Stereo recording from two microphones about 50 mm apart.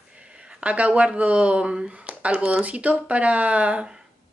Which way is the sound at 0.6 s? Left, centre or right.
Right.